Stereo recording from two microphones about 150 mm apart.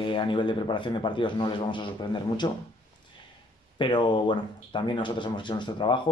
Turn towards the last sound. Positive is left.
turn(degrees=30)  # may be behind; listen again after turning